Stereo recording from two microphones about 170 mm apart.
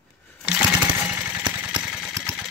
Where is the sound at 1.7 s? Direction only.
5° right (ahead or behind).